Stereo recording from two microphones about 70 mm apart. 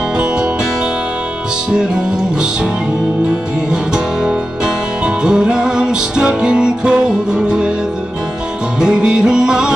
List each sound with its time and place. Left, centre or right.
5.0 s music: centre
8.7 s music: centre